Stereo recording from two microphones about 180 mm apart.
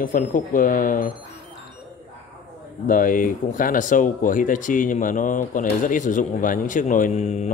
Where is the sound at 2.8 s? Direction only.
50° left (ahead or behind).